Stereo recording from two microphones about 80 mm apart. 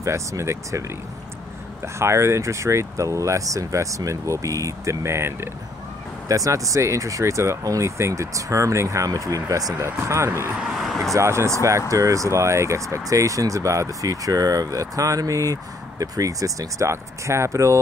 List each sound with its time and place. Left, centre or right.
0.0 s speech: right
6.2 s speech: right
10.5 s vehicle: centre
11.1 s speech: right